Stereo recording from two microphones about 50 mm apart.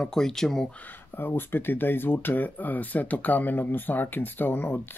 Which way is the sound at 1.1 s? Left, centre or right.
Left.